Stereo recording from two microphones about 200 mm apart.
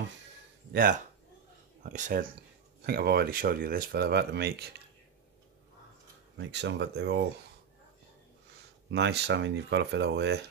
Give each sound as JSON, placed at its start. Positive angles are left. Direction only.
{"t": 1.8, "sound": "speech", "side_deg": -40}
{"t": 2.9, "sound": "speech", "side_deg": -50}
{"t": 6.3, "sound": "speech", "side_deg": -60}
{"t": 8.9, "sound": "speech", "side_deg": -60}